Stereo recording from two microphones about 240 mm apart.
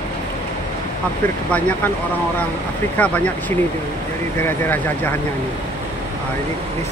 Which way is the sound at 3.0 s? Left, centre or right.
Centre.